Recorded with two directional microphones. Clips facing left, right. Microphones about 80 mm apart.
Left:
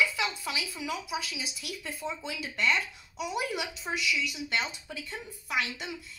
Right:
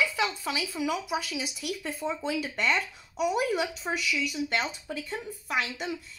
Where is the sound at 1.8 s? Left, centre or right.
Right.